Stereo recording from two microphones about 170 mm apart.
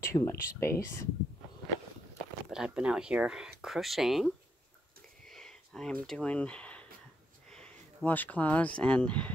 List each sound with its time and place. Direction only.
0.0 s speech: 15° left (ahead or behind)
2.5 s speech: 5° right (ahead or behind)
5.3 s a sound: 5° left (ahead or behind)
7.5 s speech: 10° left (ahead or behind)